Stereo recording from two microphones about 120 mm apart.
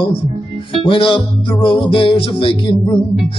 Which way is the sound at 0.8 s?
45° left (ahead or behind).